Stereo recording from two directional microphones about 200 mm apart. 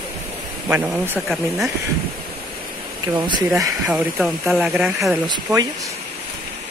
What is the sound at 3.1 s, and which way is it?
Speech, 20° right (ahead or behind).